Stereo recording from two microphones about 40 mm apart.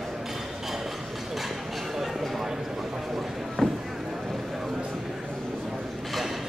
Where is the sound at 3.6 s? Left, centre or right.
Centre.